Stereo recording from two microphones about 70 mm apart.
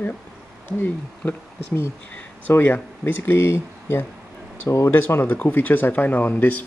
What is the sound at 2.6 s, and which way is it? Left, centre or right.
Speech, left.